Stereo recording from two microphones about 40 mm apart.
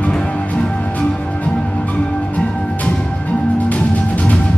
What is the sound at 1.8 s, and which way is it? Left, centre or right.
Music, left.